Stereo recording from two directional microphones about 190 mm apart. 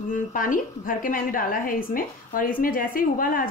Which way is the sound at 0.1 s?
45° left (ahead or behind).